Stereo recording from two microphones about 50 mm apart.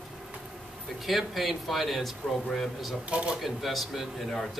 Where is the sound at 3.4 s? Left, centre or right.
Centre.